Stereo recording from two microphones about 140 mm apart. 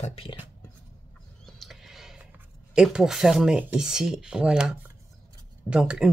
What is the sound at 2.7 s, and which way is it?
Speech, 5° right (ahead or behind).